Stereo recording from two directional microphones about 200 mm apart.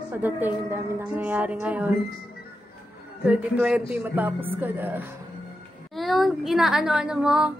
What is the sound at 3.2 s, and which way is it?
A woman's voice, 5° right (ahead or behind).